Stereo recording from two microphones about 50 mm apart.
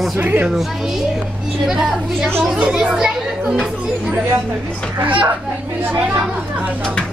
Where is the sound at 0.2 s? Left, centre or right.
Right.